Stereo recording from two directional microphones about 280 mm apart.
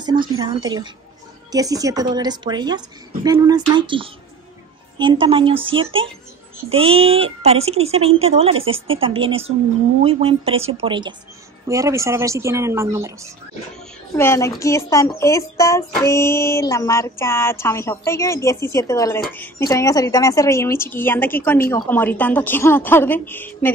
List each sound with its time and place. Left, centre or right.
0.0 s a woman's voice: centre
14.1 s speech: centre